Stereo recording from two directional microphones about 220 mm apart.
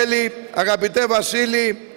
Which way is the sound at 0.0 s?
15° right (ahead or behind).